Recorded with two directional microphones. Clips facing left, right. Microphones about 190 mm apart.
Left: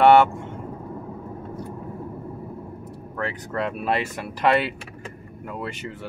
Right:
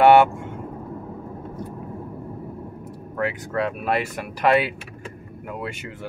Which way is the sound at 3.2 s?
5° right (ahead or behind).